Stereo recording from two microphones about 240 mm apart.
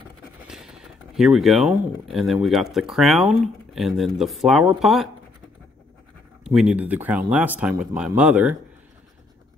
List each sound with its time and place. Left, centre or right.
0.5 s speech: centre
6.4 s speech: centre